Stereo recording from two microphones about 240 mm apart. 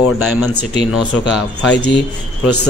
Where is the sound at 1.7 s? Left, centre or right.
Left.